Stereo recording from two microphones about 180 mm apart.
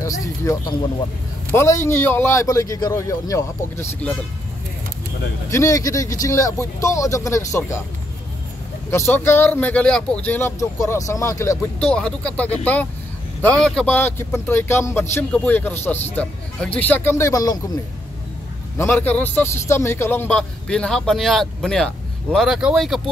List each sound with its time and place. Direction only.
0.2 s speech: 20° left (ahead or behind)
5.5 s speech: 15° left (ahead or behind)
8.9 s speech: 15° left (ahead or behind)
18.8 s a man's voice: 10° left (ahead or behind)